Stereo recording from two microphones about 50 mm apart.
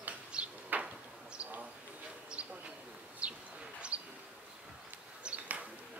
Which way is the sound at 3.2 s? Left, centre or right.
Right.